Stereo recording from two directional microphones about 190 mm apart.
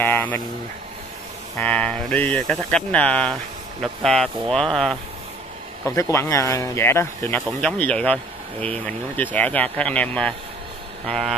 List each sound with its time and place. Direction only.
0.0 s a sound: 10° left (ahead or behind)
1.6 s speech: 5° left (ahead or behind)
6.1 s speech: 15° left (ahead or behind)